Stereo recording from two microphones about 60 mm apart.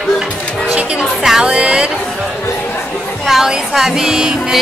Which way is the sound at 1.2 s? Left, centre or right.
Centre.